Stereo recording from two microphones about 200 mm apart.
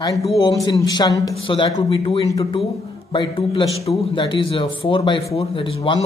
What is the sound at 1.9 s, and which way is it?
A man's voice, 30° left (ahead or behind).